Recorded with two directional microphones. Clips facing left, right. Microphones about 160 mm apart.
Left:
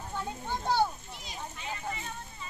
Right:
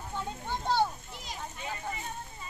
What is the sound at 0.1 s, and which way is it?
Children playing, 5° left (ahead or behind).